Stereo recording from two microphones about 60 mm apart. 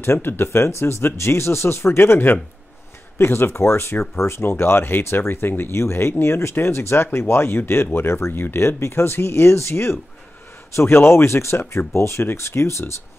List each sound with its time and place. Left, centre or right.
0.0 s speech: left